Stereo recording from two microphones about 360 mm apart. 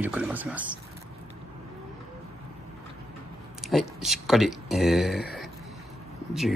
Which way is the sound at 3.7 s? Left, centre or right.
Centre.